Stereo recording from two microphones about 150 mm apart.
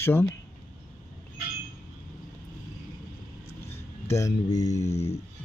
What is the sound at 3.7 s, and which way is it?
Speech, 20° left (ahead or behind).